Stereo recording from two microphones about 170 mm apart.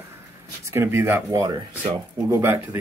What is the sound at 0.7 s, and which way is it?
Speech, 15° right (ahead or behind).